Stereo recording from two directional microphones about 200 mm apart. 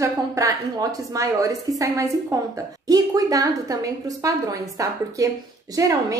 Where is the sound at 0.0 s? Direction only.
15° right (ahead or behind).